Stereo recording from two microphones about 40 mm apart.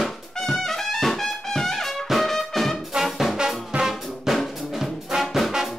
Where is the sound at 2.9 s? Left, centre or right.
Centre.